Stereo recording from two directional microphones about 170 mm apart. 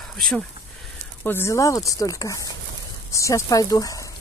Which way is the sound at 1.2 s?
15° left (ahead or behind).